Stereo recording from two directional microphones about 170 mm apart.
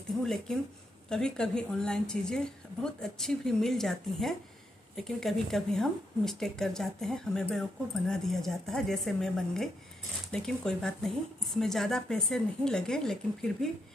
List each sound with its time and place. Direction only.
0.2 s speech: centre (ahead or behind)